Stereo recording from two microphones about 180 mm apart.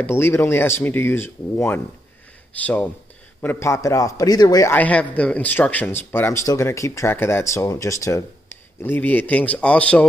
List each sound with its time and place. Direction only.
0.0 s a man's voice: 15° left (ahead or behind)